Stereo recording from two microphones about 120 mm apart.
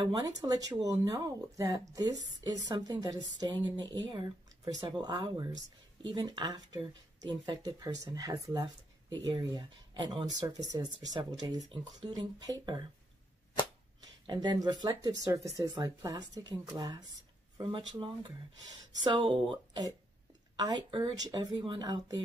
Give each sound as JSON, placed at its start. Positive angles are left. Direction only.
{"t": 0.0, "sound": "speech", "side_deg": -30}
{"t": 14.2, "sound": "speech", "side_deg": -35}